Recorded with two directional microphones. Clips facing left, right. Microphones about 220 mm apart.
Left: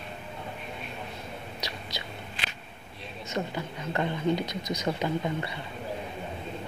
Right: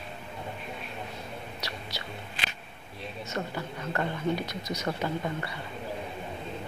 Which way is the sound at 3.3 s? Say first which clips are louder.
Left 3 dB; 15° left (ahead or behind).